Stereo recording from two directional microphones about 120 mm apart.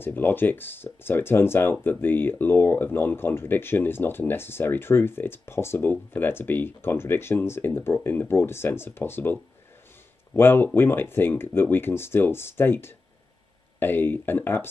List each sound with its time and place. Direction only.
0.0 s speech: 15° left (ahead or behind)